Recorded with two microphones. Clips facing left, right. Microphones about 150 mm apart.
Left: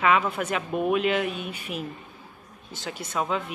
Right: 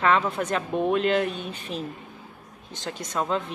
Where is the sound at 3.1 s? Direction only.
5° left (ahead or behind).